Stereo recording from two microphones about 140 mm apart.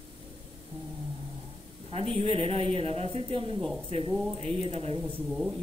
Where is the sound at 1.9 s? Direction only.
45° right (ahead or behind).